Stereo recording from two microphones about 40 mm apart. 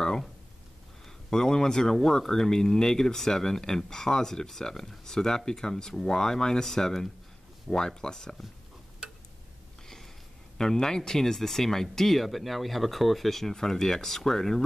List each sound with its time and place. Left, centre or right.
1.0 s speech: centre
10.6 s speech: centre